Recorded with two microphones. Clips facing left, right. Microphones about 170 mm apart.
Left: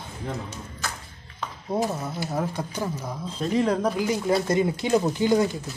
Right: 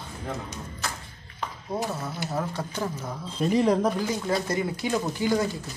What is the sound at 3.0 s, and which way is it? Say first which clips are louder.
Speech: right 1 dB; 5° right (ahead or behind).